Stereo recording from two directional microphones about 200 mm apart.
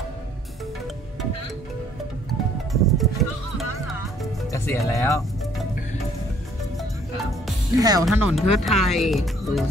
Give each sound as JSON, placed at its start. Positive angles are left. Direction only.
{"t": 2.7, "sound": "music", "side_deg": 0}
{"t": 4.5, "sound": "speech", "side_deg": 15}
{"t": 7.7, "sound": "speech", "side_deg": -20}
{"t": 8.0, "sound": "speech", "side_deg": -5}